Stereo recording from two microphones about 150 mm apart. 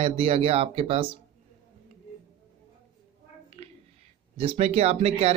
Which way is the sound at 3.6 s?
45° right (ahead or behind).